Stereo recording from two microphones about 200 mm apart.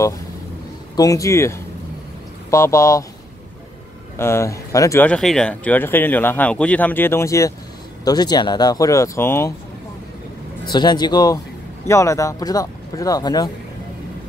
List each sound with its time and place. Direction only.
0.9 s speech: 15° left (ahead or behind)
4.2 s speech: 15° left (ahead or behind)
10.6 s speech: 20° left (ahead or behind)